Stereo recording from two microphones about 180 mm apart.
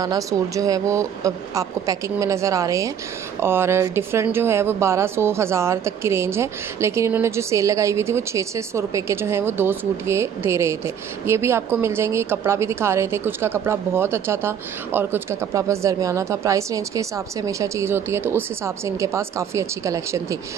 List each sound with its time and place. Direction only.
0.0 s a woman's voice: 20° right (ahead or behind)